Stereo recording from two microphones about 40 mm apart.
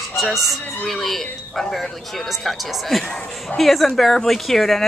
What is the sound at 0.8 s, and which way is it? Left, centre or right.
A woman's voice, centre.